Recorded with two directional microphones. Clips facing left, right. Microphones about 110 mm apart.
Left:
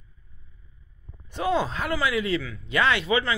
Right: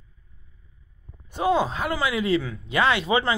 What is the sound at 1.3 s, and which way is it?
Speech, 15° right (ahead or behind).